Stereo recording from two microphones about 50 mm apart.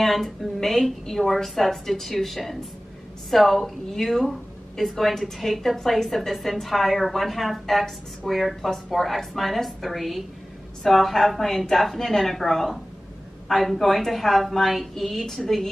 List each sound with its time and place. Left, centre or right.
0.0 s a woman's voice: centre